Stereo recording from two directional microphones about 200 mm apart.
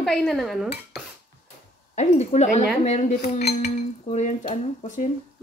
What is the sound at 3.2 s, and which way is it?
Cutlery, 50° left (ahead or behind).